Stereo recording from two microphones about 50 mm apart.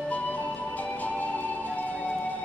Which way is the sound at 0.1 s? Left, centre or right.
Left.